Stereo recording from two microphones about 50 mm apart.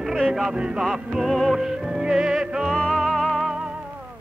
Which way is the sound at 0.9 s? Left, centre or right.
Centre.